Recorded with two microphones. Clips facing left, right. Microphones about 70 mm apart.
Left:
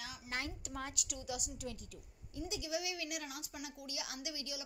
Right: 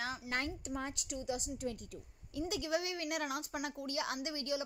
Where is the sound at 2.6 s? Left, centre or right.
Right.